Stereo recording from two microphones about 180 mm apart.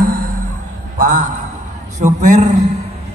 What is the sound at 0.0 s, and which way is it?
Music, 50° right (ahead or behind).